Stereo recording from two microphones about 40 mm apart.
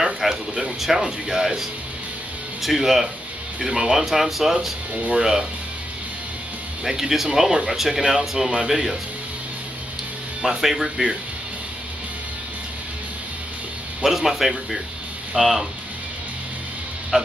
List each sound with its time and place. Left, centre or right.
0.0 s a sound: centre
0.7 s speech: centre
2.6 s speech: centre
6.8 s speech: centre
10.6 s speech: centre
14.0 s speech: centre
17.1 s speech: centre